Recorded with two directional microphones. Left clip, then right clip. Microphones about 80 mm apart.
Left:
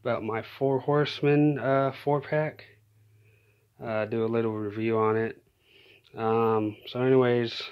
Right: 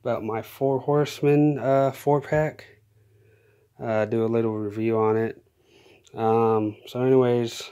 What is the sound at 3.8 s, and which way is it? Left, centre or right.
Speech, right.